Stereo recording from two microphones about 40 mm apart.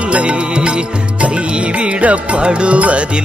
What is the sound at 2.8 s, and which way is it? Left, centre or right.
Music, right.